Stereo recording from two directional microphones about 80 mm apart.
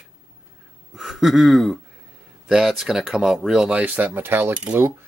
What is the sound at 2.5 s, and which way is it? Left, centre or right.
Speech, centre.